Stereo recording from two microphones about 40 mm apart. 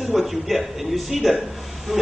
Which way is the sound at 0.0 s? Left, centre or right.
Centre.